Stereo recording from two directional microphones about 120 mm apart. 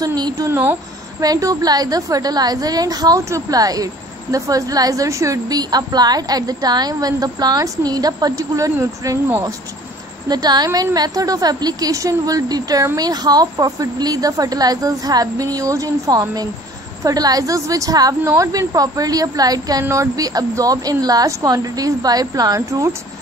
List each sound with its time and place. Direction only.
0.0 s a sound: 30° right (ahead or behind)
0.5 s speech: 15° right (ahead or behind)
1.2 s a woman's voice: 30° right (ahead or behind)
10.2 s a woman's voice: 35° right (ahead or behind)